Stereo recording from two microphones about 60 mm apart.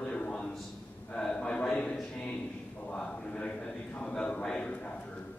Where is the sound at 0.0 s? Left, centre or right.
Centre.